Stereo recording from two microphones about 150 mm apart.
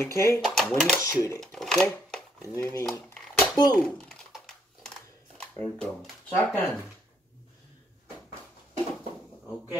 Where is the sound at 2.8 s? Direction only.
Centre (ahead or behind).